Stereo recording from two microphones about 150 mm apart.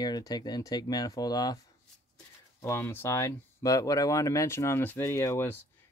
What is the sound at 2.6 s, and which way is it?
Speech, 15° left (ahead or behind).